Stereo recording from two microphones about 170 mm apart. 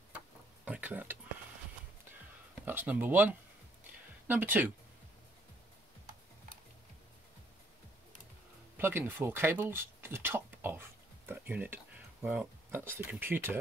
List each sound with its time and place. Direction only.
0.7 s speech: 10° right (ahead or behind)
2.6 s speech: 10° right (ahead or behind)
8.7 s speech: 15° right (ahead or behind)
11.2 s a sound: 10° right (ahead or behind)
13.1 s speech: 10° right (ahead or behind)